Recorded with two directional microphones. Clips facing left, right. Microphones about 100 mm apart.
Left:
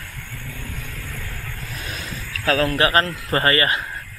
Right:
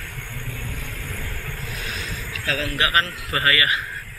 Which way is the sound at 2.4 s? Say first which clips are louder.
Left 6 dB; 45° left (ahead or behind).